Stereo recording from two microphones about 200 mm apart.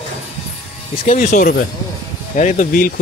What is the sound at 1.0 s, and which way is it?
Speech, 40° left (ahead or behind).